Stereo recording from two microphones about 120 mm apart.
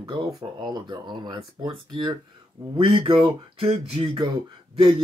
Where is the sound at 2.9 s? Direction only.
45° right (ahead or behind).